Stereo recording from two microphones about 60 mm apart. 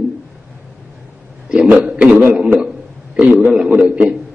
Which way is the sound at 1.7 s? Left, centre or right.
Centre.